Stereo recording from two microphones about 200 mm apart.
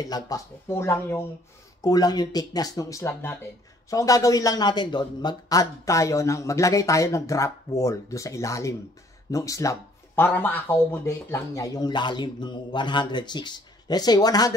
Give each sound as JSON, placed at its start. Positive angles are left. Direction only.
{"t": 0.0, "sound": "a man's voice", "side_deg": 20}